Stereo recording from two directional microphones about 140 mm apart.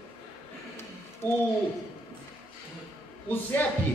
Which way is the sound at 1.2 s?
15° left (ahead or behind).